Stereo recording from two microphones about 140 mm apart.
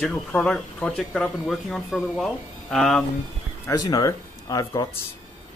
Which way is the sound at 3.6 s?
25° left (ahead or behind).